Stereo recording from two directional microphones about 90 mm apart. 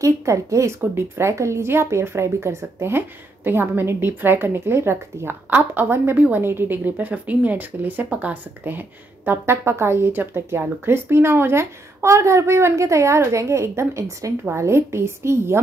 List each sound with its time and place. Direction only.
0.0 s a woman's voice: 35° right (ahead or behind)